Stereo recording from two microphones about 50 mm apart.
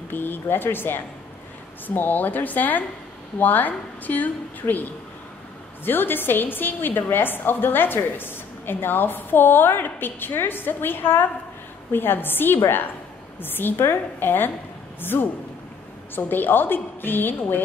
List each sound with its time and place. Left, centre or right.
0.1 s a woman's voice: left
5.9 s a woman's voice: left